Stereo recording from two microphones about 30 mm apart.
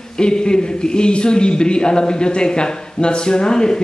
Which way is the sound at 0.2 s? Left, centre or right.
Left.